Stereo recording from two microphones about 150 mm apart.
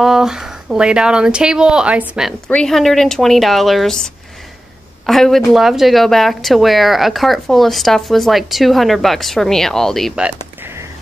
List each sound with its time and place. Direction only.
0.0 s speech: centre (ahead or behind)